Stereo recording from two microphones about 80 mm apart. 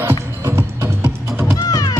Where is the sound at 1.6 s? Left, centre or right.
Left.